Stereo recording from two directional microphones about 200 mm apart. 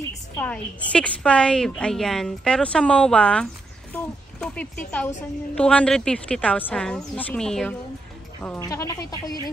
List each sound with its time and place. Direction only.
0.4 s a woman's voice: 5° left (ahead or behind)